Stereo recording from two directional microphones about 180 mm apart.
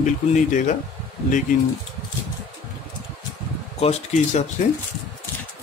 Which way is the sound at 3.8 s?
40° left (ahead or behind).